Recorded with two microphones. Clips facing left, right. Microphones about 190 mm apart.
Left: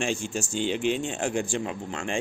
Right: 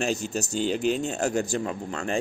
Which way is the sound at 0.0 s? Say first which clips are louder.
Right 1 dB; 40° right (ahead or behind).